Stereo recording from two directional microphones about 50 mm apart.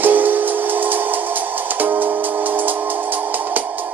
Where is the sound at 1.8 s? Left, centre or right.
Right.